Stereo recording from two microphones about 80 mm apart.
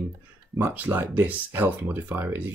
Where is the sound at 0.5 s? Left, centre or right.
Right.